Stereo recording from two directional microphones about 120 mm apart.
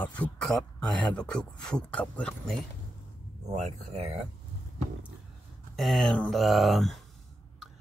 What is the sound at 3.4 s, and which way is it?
Speech, 70° right (ahead or behind).